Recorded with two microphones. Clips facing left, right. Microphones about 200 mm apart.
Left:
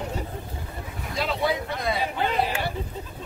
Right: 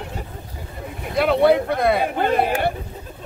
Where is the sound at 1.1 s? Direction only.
60° right (ahead or behind).